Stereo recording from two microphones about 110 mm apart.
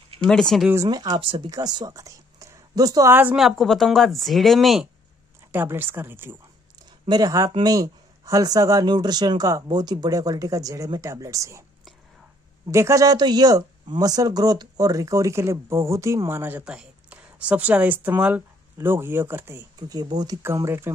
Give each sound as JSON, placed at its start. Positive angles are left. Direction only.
{"t": 0.3, "sound": "speech", "side_deg": 5}
{"t": 0.8, "sound": "speech", "side_deg": -40}
{"t": 1.5, "sound": "speech", "side_deg": -35}
{"t": 3.1, "sound": "speech", "side_deg": -20}
{"t": 3.3, "sound": "speech", "side_deg": 0}
{"t": 5.5, "sound": "speech", "side_deg": -20}
{"t": 6.9, "sound": "speech", "side_deg": -40}
{"t": 12.7, "sound": "speech", "side_deg": -30}
{"t": 19.9, "sound": "speech", "side_deg": -40}
{"t": 20.4, "sound": "speech", "side_deg": -25}